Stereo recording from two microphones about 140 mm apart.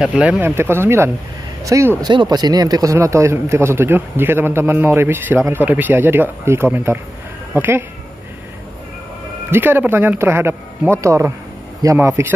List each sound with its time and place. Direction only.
0.0 s a man's voice: 10° right (ahead or behind)
9.5 s a man's voice: 15° right (ahead or behind)